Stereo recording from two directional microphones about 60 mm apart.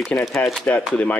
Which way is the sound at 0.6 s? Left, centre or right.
Left.